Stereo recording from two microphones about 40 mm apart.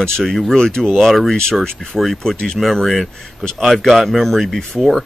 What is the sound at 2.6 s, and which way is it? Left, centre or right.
A man's voice, centre.